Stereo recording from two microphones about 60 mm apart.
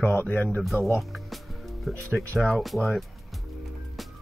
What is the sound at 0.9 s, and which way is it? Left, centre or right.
Speech, centre.